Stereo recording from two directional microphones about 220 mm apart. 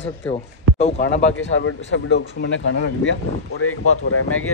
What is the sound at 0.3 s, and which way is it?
Speech, 30° left (ahead or behind).